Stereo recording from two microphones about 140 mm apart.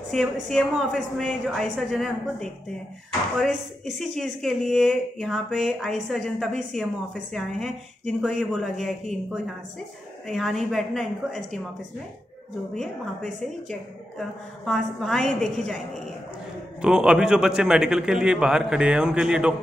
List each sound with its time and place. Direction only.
0.1 s speech: centre (ahead or behind)
10.2 s speech: centre (ahead or behind)
12.7 s speech: 5° left (ahead or behind)
16.8 s speech: 5° right (ahead or behind)